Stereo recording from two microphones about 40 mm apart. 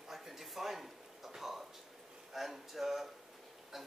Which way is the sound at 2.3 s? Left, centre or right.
Centre.